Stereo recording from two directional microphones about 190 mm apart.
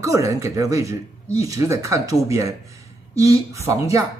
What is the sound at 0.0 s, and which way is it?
Speech, 15° right (ahead or behind).